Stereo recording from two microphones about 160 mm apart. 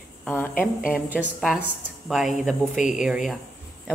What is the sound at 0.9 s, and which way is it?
Speech, 5° right (ahead or behind).